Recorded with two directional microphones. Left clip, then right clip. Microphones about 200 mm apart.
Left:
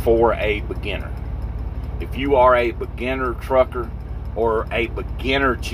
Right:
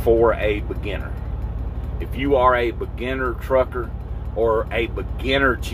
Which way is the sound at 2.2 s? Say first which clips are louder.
Left 2 dB; 5° right (ahead or behind).